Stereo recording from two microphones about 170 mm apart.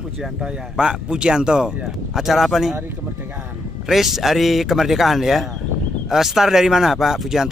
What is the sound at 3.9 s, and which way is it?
Speech, centre (ahead or behind).